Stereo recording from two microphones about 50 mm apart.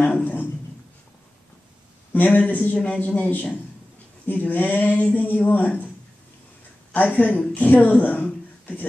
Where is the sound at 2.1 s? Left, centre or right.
Left.